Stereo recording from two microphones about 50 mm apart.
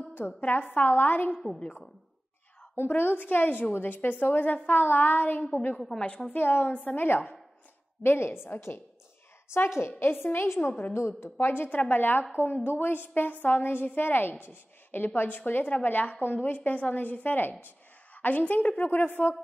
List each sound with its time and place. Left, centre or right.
0.4 s a woman's voice: left
1.3 s a woman's voice: centre
3.0 s a woman's voice: left
5.8 s a woman's voice: centre
6.0 s a woman's voice: left
6.3 s a woman's voice: left
8.0 s a woman's voice: left
9.8 s a woman's voice: left
11.2 s a woman's voice: left
11.7 s a woman's voice: left